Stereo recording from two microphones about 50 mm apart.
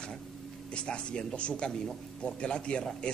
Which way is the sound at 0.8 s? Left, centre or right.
Centre.